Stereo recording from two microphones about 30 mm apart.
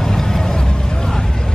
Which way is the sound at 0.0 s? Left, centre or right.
Centre.